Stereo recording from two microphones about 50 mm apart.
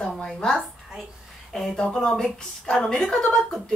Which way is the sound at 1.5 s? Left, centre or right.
Centre.